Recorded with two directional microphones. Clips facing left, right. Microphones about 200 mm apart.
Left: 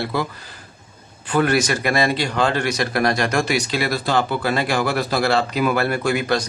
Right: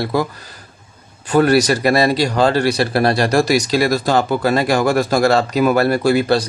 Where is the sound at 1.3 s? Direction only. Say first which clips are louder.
Right 5 dB; 35° right (ahead or behind).